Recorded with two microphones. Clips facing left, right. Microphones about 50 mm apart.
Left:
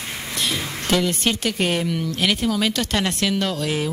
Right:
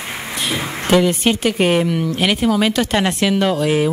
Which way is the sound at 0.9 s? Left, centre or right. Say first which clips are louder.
Right 6 dB; centre.